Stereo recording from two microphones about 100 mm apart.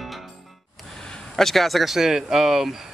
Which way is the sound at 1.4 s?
Centre (ahead or behind).